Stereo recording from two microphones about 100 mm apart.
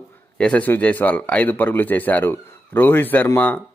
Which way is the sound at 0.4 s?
15° left (ahead or behind).